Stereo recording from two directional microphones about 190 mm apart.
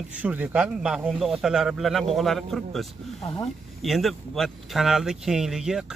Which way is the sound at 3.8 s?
Centre (ahead or behind).